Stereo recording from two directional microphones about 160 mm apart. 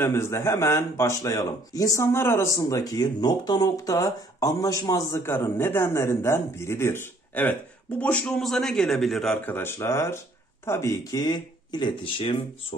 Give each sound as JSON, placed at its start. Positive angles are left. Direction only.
{"t": 0.0, "sound": "a man's voice", "side_deg": 15}
{"t": 9.5, "sound": "speech", "side_deg": 15}